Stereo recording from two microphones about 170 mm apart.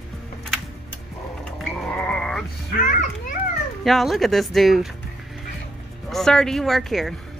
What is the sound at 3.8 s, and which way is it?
Speech, centre (ahead or behind).